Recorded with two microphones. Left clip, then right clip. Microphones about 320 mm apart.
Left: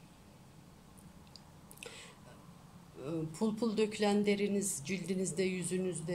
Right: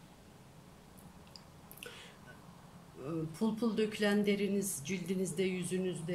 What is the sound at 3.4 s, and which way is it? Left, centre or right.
Speech, centre.